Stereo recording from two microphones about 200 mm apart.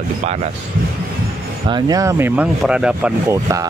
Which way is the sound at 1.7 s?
20° right (ahead or behind).